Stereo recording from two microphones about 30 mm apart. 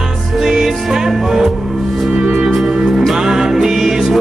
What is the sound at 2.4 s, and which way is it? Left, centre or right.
Music, centre.